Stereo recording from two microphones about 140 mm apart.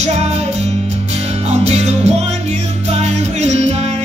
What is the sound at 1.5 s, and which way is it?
Music, 50° right (ahead or behind).